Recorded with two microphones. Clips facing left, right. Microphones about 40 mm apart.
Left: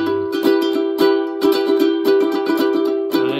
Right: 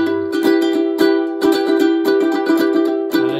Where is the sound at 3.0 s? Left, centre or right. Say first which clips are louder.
Right 1 dB; left.